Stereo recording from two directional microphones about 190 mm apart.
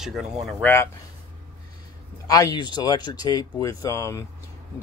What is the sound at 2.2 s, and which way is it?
Speech, 20° left (ahead or behind).